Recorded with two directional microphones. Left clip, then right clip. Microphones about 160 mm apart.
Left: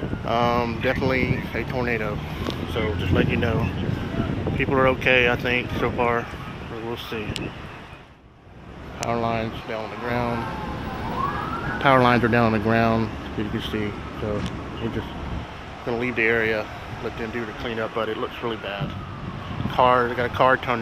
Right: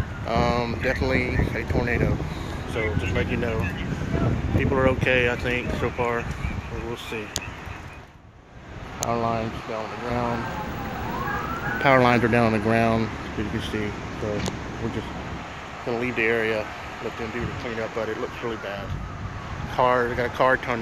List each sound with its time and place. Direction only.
0.3 s speech: 15° left (ahead or behind)
4.6 s speech: 15° left (ahead or behind)
9.1 s speech: 5° right (ahead or behind)
11.8 s speech: centre (ahead or behind)
15.9 s speech: centre (ahead or behind)
19.7 s speech: 10° left (ahead or behind)